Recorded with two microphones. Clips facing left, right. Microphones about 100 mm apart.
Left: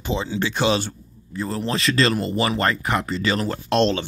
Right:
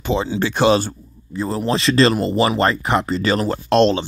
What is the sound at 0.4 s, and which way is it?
Speech, 50° right (ahead or behind).